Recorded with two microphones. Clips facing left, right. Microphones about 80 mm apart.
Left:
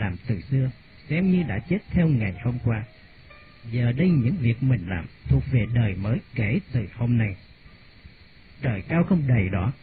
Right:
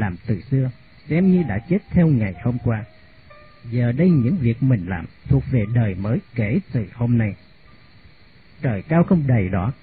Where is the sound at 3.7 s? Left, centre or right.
Right.